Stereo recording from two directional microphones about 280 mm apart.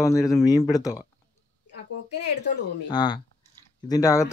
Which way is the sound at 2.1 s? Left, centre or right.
Left.